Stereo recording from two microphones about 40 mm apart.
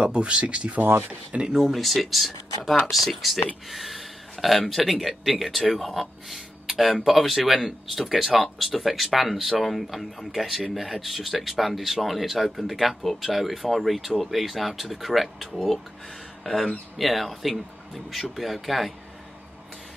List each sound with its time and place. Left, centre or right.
0.0 s speech: right
1.5 s speech: centre